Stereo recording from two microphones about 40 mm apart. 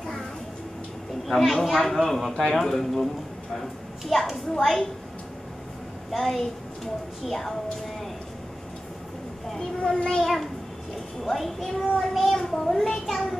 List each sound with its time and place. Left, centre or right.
1.2 s a child's voice: centre
4.1 s a child's voice: centre
6.1 s a child's voice: centre
9.8 s a child's voice: left
10.2 s a child's voice: centre
12.4 s a child's voice: centre